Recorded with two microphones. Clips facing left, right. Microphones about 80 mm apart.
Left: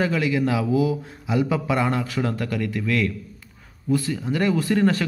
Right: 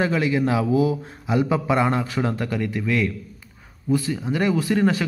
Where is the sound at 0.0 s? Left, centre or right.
Right.